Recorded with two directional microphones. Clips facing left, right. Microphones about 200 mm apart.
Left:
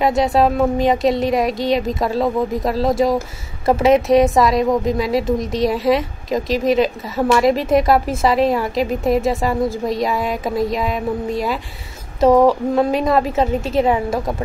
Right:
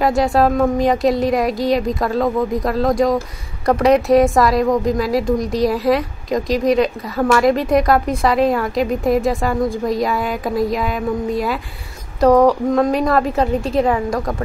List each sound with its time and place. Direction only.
0.0 s a woman's voice: centre (ahead or behind)
13.8 s a woman's voice: 25° left (ahead or behind)